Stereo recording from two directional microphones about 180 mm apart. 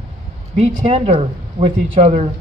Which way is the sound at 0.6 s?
40° right (ahead or behind).